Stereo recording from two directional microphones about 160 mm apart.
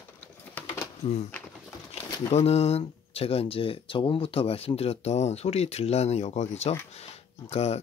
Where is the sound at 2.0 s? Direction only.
25° left (ahead or behind).